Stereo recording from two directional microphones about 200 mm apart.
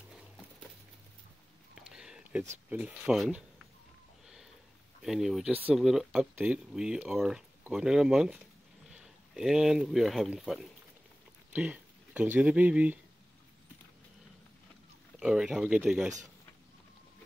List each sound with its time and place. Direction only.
1.8 s a sound: 5° right (ahead or behind)
2.7 s speech: 5° right (ahead or behind)
5.0 s speech: centre (ahead or behind)
15.1 s speech: 5° right (ahead or behind)